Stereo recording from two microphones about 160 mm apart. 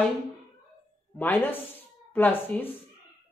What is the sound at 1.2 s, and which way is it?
Speech, 10° left (ahead or behind).